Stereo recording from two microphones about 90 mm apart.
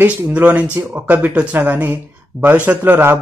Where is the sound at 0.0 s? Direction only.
20° right (ahead or behind).